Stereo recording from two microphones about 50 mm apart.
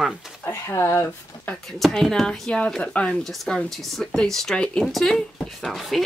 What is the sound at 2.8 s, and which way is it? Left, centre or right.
Speech, left.